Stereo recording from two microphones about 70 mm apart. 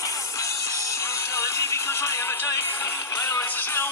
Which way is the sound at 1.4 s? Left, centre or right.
Left.